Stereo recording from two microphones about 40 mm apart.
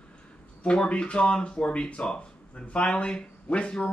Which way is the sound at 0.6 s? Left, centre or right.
Left.